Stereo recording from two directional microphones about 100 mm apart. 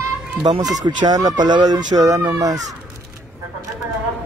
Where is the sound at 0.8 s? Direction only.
40° right (ahead or behind).